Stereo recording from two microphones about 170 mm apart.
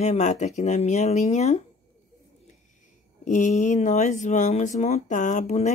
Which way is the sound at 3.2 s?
45° left (ahead or behind).